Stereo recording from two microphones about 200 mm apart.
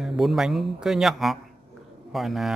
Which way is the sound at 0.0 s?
Centre (ahead or behind).